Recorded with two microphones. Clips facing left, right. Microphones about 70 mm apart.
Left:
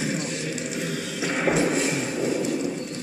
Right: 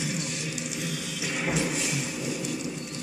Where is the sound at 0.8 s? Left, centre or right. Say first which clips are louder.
Left 5 dB; left.